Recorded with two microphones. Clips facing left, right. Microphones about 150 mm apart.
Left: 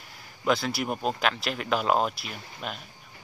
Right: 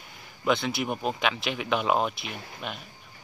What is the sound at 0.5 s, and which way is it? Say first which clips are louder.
Speech: even; centre (ahead or behind).